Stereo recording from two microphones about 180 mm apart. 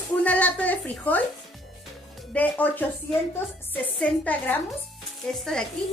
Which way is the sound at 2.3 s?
10° left (ahead or behind).